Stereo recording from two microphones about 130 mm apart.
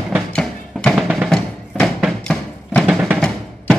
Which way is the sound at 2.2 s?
5° left (ahead or behind).